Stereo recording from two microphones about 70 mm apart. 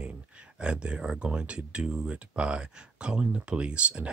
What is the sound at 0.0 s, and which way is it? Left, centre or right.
Speech, centre.